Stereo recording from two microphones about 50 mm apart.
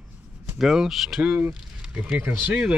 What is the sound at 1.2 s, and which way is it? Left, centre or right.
Speech, right.